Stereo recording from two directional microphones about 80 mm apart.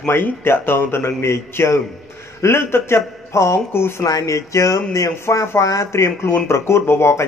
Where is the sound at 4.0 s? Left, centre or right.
Left.